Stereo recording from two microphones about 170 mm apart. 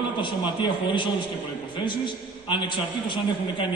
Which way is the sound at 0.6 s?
30° left (ahead or behind).